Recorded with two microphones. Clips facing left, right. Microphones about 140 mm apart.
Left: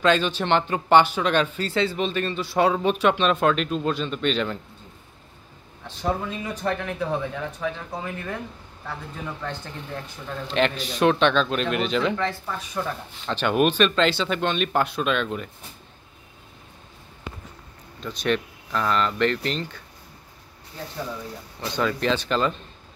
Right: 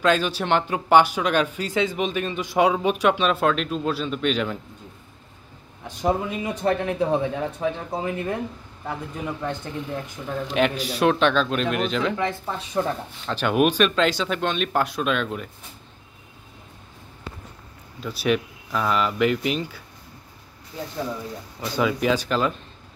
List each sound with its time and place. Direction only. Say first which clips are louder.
0.0 s speech: even; 10° right (ahead or behind)
5.9 s speech: right 3 dB; 15° right (ahead or behind)
10.2 s speech: right 1 dB; 10° right (ahead or behind)
12.2 s speech: right 1 dB; 20° right (ahead or behind)
13.3 s speech: right 1 dB; 5° right (ahead or behind)
18.0 s speech: right 2 dB; 5° right (ahead or behind)
21.5 s speech: right 2 dB; 5° right (ahead or behind)